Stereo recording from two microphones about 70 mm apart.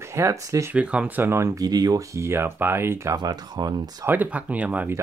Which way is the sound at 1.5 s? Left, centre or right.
Right.